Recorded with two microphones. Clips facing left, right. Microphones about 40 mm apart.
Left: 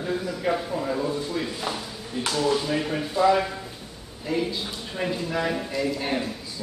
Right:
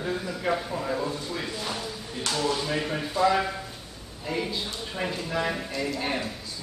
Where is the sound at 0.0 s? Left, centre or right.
Centre.